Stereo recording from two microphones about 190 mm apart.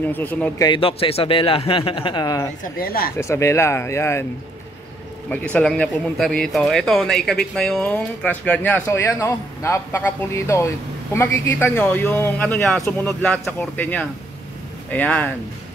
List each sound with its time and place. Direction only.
0.1 s a man's voice: 10° left (ahead or behind)
0.7 s speech: 30° left (ahead or behind)
2.6 s speech: 50° left (ahead or behind)
3.2 s a man's voice: 15° left (ahead or behind)
5.3 s a man's voice: 5° left (ahead or behind)